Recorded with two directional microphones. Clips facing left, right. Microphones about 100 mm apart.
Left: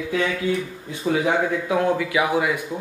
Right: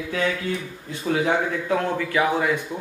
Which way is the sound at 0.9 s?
15° left (ahead or behind).